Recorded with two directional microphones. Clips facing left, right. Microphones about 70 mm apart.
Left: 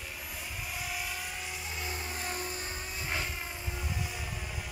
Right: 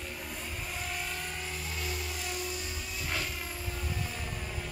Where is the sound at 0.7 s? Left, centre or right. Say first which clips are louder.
Even; centre.